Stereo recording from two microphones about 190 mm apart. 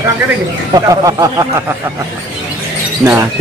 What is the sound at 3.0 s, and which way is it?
Speech, 10° right (ahead or behind).